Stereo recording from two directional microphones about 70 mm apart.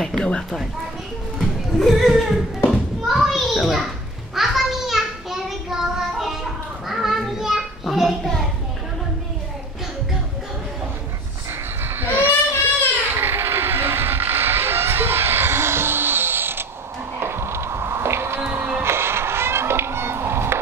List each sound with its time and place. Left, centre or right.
0.0 s a sound: centre
1.4 s speech: centre
3.1 s children playing: centre
4.4 s child singing: centre
11.8 s a sound: right
18.5 s music: right